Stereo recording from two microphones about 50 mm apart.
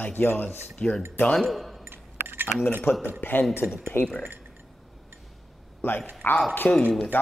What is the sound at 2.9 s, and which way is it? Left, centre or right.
A man's voice, left.